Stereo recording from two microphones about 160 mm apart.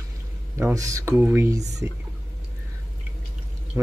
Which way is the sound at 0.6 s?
20° right (ahead or behind).